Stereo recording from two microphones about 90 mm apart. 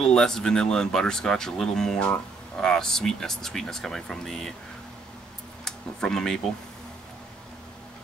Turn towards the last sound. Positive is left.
turn(degrees=5)  # may be behind; listen again after turning